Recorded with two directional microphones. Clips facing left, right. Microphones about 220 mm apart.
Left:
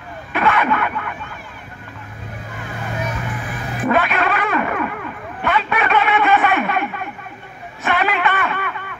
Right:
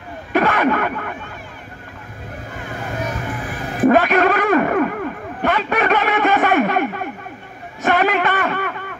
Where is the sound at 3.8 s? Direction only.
45° right (ahead or behind).